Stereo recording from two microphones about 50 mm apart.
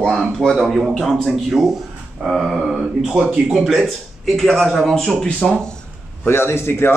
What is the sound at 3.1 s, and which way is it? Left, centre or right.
Speech, right.